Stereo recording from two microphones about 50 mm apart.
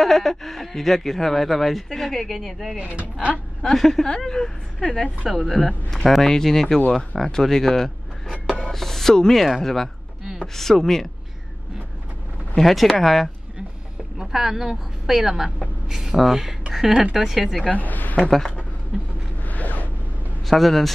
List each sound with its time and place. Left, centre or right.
0.0 s speech: centre
2.8 s speech: right
3.6 s speech: centre
12.5 s speech: centre
14.1 s a woman's voice: centre
17.6 s a woman's voice: left
19.4 s a sound: left
20.4 s speech: centre